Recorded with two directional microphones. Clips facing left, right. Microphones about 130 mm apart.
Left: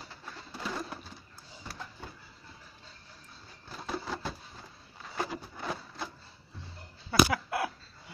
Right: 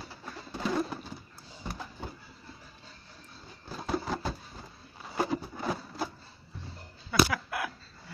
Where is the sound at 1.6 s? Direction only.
15° right (ahead or behind).